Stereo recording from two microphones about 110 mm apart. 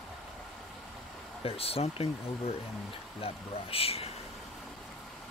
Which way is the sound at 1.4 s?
60° left (ahead or behind).